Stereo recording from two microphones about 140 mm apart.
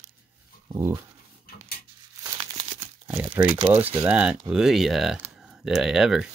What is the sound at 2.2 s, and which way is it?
Crumpling, 30° right (ahead or behind).